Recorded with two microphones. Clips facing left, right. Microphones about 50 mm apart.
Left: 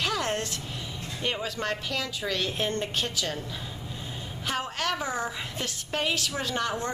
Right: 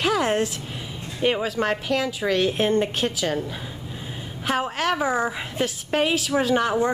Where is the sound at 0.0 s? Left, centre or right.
Centre.